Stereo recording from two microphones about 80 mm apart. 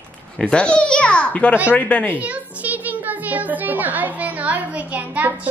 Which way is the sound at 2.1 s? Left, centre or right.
Centre.